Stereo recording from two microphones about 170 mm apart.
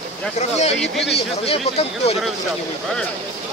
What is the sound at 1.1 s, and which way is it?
Speech, 35° left (ahead or behind).